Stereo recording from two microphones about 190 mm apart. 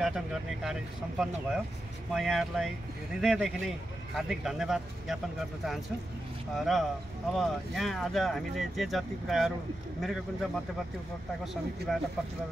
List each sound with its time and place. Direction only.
0.0 s speech: 5° right (ahead or behind)
6.5 s speech: centre (ahead or behind)